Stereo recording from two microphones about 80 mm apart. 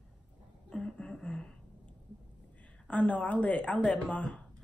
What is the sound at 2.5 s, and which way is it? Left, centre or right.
A woman's voice, centre.